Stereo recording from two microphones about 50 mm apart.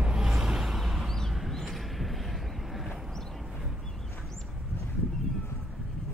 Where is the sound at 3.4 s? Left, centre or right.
Centre.